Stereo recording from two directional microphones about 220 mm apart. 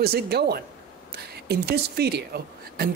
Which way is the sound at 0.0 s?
45° right (ahead or behind).